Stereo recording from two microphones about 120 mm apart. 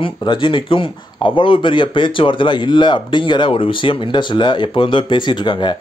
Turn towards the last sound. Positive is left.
turn(degrees=40)  # may be behind; listen again after turning